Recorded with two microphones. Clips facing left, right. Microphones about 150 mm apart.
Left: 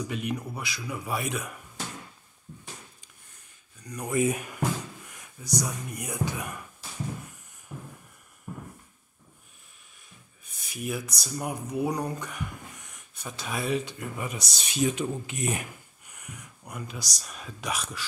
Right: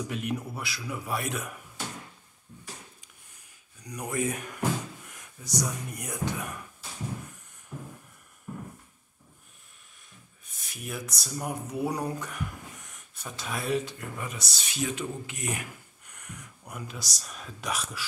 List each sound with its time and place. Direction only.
0.1 s speech: centre (ahead or behind)
3.8 s speech: 10° right (ahead or behind)
4.1 s speech: 10° left (ahead or behind)
10.4 s speech: centre (ahead or behind)
14.2 s speech: 15° left (ahead or behind)
16.1 s speech: 5° left (ahead or behind)